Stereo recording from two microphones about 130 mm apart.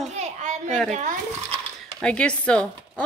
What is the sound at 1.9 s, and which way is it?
Speech, 5° left (ahead or behind).